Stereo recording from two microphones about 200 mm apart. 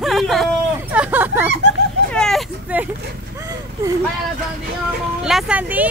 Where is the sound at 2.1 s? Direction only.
Centre (ahead or behind).